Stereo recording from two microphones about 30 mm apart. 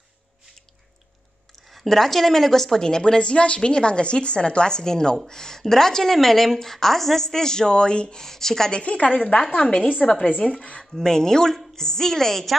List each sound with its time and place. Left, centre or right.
1.9 s a woman's voice: centre
6.1 s speech: centre; by 8.2 s left
8.2 s speech: centre
8.7 s speech: left
9.4 s a woman's voice: left
10.5 s speech: left
11.0 s speech: centre